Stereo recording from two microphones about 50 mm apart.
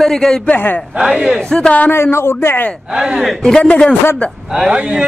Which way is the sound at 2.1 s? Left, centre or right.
Left.